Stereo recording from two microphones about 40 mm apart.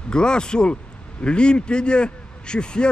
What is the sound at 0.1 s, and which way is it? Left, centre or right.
A man's voice, left.